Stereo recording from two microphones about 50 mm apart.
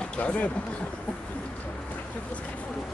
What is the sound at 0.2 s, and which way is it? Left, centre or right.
Speech, left.